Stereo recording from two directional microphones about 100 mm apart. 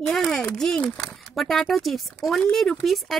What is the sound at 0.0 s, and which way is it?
A child's voice, 5° left (ahead or behind).